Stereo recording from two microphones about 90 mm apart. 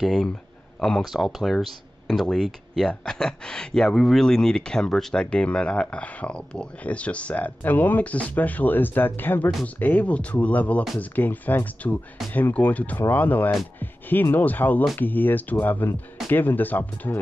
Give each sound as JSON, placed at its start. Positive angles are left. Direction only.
{"t": 0.0, "sound": "speech", "side_deg": 5}